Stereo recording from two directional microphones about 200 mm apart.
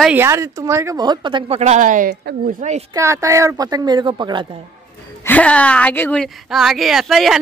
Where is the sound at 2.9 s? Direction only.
15° right (ahead or behind).